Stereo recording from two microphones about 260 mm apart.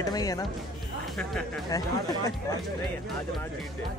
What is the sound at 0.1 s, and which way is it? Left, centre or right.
Speech, centre.